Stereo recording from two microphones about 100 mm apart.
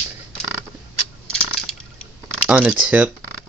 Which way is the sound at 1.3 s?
5° left (ahead or behind).